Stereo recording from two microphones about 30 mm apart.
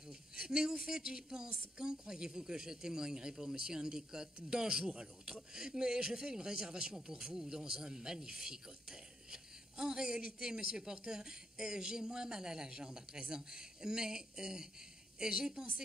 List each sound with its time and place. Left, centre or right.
0.0 s a sound: right
0.8 s speech: right
4.8 s speech: right